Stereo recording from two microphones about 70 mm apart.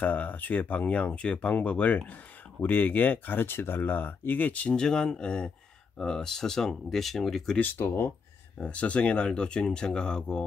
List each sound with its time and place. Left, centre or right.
0.0 s speech: left; by 7.5 s centre
7.5 s speech: left
8.5 s speech: centre